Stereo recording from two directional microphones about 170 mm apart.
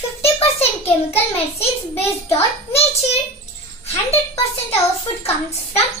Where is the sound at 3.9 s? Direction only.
40° left (ahead or behind).